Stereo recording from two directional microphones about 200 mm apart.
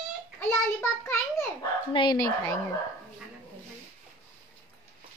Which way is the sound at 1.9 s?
25° left (ahead or behind).